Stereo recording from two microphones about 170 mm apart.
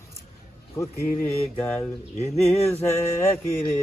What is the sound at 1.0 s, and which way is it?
Speech, 55° left (ahead or behind).